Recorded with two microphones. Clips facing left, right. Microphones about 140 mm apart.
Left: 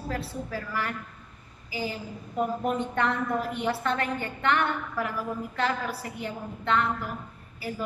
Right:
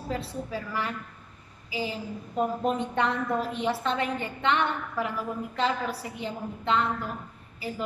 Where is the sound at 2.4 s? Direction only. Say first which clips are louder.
Right 1 dB; 20° right (ahead or behind).